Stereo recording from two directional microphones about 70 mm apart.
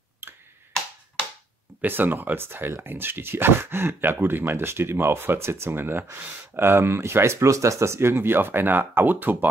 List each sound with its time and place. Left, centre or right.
0.2 s finger snapping: right
1.8 s speech: right